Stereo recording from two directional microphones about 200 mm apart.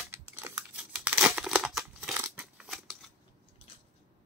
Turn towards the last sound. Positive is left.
turn(degrees=0)  # may be behind; listen again after turning